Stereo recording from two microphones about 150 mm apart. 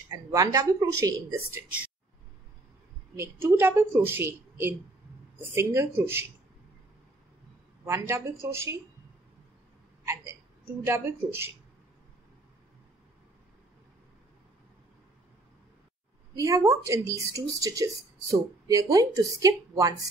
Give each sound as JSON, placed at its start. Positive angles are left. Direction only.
{"t": 0.1, "sound": "speech", "side_deg": -25}
{"t": 3.2, "sound": "speech", "side_deg": -15}
{"t": 7.8, "sound": "speech", "side_deg": -15}
{"t": 10.9, "sound": "speech", "side_deg": -15}
{"t": 16.3, "sound": "speech", "side_deg": -20}